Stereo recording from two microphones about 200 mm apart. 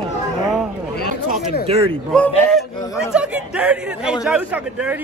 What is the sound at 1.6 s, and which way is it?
Speech, 30° right (ahead or behind).